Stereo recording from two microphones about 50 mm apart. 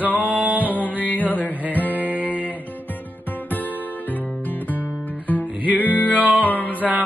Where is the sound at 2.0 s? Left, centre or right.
Right.